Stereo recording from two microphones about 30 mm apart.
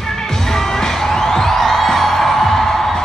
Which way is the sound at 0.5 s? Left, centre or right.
Centre.